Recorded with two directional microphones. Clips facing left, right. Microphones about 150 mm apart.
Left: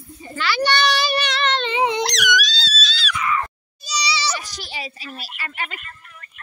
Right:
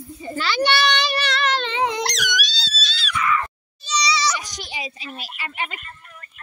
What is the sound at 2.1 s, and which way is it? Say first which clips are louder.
Wail: left 5 dB; 90° left.